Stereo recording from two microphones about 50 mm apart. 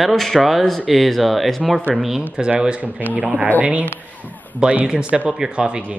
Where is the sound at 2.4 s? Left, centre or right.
Centre.